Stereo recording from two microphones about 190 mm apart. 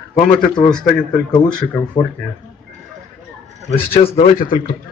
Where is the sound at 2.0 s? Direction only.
25° left (ahead or behind).